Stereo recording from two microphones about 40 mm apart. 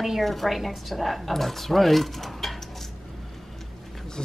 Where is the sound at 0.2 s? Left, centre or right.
Centre.